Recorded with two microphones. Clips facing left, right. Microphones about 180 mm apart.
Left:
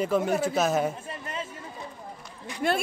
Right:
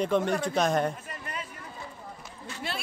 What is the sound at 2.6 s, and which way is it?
Speech, 50° left (ahead or behind).